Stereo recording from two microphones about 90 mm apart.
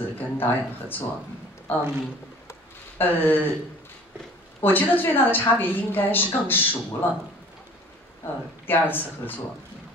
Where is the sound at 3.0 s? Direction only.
20° left (ahead or behind).